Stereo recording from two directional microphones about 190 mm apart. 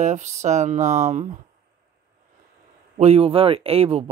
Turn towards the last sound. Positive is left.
turn(degrees=-30)  # may be behind; listen again after turning